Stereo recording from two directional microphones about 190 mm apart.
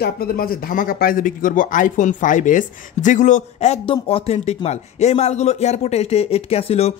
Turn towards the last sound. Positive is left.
turn(degrees=35)  # may be behind; listen again after turning